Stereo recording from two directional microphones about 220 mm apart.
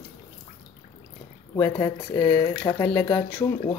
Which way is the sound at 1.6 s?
15° left (ahead or behind).